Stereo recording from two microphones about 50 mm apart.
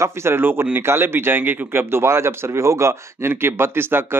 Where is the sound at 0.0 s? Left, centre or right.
Right.